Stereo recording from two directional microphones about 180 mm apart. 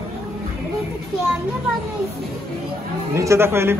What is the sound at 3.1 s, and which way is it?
Speech, 15° right (ahead or behind).